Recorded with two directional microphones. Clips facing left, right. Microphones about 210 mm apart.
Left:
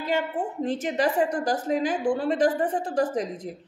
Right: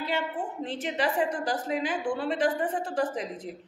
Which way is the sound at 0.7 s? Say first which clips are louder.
Left 5 dB; 45° left (ahead or behind).